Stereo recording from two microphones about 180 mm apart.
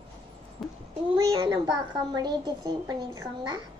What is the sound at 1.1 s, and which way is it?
A woman's voice, 20° right (ahead or behind).